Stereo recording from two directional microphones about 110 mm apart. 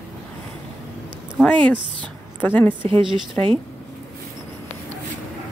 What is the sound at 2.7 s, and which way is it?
Speech, 50° right (ahead or behind).